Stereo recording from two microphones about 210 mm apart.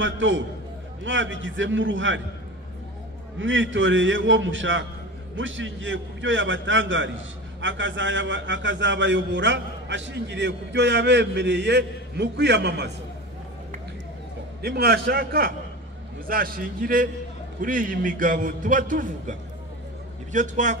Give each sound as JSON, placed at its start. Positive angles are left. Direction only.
{"t": 0.0, "sound": "a man's voice", "side_deg": -65}
{"t": 3.3, "sound": "a man's voice", "side_deg": -65}
{"t": 14.6, "sound": "a man's voice", "side_deg": -50}
{"t": 20.3, "sound": "a man's voice", "side_deg": -35}